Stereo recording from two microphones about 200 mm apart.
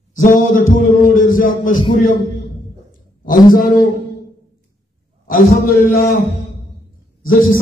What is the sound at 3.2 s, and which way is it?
Speech, 45° left (ahead or behind).